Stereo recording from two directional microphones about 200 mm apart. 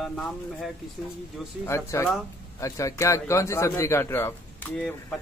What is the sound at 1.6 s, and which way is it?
Speech, 15° left (ahead or behind).